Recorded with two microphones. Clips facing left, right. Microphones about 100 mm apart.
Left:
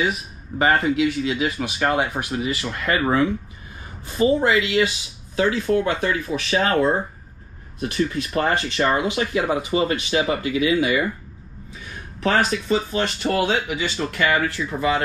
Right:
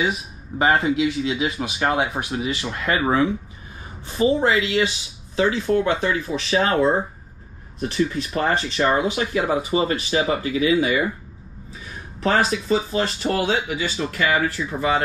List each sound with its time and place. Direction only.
0.0 s speech: centre (ahead or behind)
12.4 s speech: centre (ahead or behind)